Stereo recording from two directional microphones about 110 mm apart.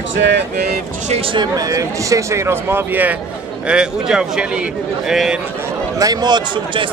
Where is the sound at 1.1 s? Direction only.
55° right (ahead or behind).